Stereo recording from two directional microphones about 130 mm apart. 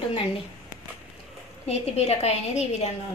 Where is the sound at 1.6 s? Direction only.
55° left (ahead or behind).